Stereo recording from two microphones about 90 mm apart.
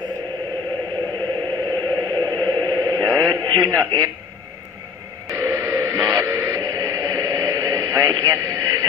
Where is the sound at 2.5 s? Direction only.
45° right (ahead or behind).